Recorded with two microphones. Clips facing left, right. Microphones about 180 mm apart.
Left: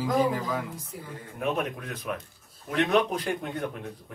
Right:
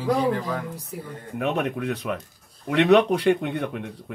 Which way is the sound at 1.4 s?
70° right (ahead or behind).